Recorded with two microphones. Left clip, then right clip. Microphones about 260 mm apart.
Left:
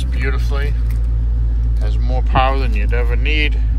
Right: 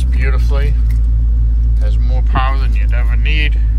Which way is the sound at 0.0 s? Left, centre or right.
Centre.